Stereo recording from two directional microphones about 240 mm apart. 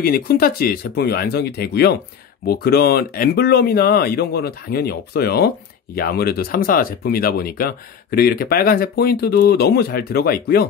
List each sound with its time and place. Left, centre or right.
0.0 s speech: left